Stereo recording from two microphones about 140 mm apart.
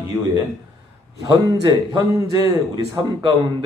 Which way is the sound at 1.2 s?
25° right (ahead or behind).